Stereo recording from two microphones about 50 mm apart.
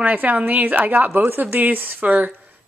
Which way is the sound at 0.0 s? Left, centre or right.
Right.